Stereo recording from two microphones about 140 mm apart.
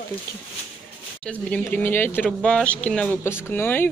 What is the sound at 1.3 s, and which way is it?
Speech, 10° left (ahead or behind).